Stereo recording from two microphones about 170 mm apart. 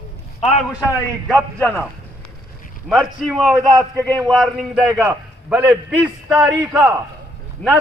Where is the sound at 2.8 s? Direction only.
Centre (ahead or behind).